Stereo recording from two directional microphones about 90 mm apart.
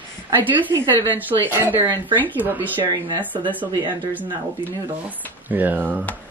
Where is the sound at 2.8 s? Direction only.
55° right (ahead or behind).